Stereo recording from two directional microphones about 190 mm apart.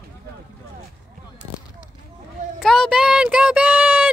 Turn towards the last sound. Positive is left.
turn(degrees=-5)  # may be behind; listen again after turning